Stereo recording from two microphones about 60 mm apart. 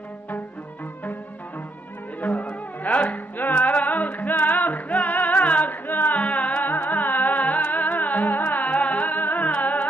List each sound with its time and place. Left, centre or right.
2.1 s music: left